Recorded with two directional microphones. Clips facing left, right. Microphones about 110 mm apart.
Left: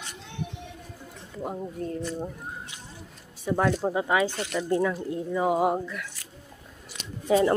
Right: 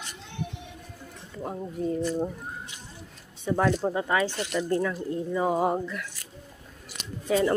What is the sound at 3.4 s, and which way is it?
Speech, centre (ahead or behind).